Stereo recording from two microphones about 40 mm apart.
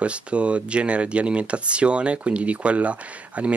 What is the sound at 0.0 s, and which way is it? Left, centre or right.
Speech, right.